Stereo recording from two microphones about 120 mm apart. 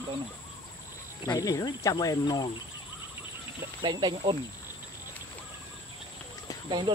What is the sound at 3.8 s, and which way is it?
Speech, 40° right (ahead or behind).